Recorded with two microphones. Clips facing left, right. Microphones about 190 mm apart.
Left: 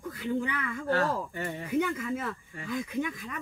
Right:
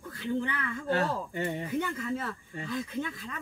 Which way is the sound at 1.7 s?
10° left (ahead or behind).